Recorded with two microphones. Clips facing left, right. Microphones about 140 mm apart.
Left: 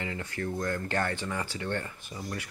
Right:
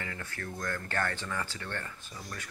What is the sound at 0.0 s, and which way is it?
Speech, 15° left (ahead or behind).